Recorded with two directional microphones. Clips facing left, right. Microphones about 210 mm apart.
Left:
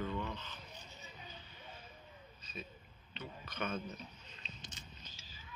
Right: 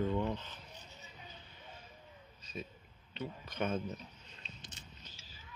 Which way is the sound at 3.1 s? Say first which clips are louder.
Right 5 dB; 40° right (ahead or behind).